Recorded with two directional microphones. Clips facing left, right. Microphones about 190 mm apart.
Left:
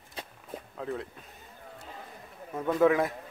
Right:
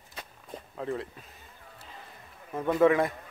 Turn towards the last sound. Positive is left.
turn(degrees=0)  # may be behind; listen again after turning